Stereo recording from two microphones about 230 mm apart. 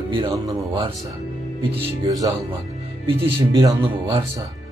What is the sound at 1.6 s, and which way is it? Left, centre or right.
Speech, right.